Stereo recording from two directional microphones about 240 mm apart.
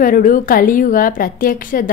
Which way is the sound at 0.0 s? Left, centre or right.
Left.